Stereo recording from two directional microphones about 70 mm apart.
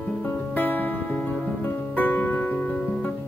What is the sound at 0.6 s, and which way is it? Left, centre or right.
Music, left.